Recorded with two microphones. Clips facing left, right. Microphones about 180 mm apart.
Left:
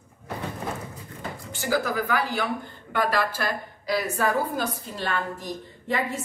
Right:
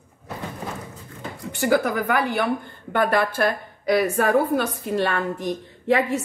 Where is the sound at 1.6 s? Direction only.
55° right (ahead or behind).